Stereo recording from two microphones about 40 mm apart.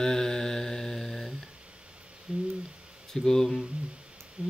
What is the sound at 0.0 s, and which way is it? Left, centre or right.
Mantra, centre.